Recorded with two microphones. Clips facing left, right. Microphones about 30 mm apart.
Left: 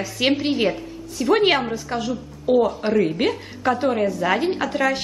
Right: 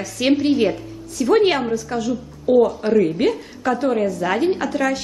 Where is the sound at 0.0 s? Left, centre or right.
Centre.